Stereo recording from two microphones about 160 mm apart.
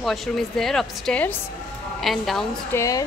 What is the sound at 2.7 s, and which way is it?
Speech, 20° left (ahead or behind).